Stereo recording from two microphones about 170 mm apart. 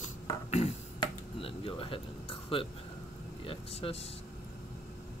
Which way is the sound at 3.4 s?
35° left (ahead or behind).